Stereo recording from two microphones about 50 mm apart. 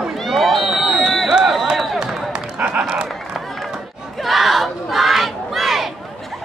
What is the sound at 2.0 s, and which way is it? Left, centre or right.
Run, centre.